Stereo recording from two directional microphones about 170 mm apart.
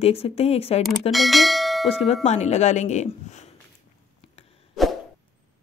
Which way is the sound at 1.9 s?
35° left (ahead or behind).